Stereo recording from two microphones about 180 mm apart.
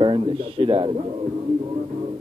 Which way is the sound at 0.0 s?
30° right (ahead or behind).